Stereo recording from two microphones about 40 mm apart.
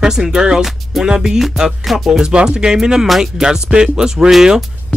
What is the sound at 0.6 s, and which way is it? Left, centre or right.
Music, centre.